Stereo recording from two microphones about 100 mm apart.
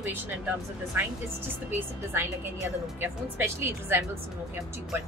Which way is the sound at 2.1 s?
25° right (ahead or behind).